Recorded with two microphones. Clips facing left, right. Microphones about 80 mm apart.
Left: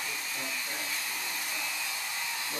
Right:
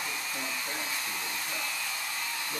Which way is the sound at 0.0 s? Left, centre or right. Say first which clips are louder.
Right 2 dB; centre.